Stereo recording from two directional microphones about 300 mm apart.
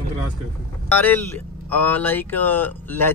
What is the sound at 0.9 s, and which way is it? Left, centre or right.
Speech, centre.